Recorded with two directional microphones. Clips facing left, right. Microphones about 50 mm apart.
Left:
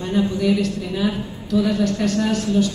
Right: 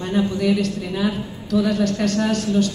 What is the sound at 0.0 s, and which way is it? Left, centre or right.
A woman's voice, right.